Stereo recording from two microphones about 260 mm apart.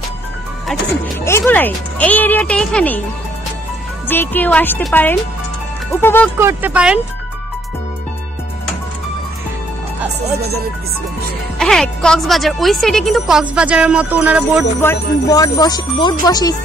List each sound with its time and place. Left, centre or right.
1.2 s speech: centre
4.1 s speech: centre
6.4 s speech: centre
11.5 s speech: centre
14.8 s speech: centre